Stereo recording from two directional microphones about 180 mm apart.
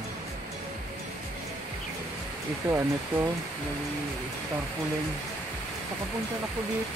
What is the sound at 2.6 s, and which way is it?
Speech, 15° right (ahead or behind).